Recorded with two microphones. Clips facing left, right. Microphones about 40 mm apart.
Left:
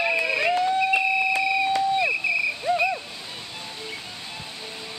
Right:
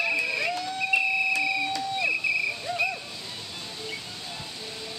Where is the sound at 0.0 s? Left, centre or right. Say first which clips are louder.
Left 4 dB; left.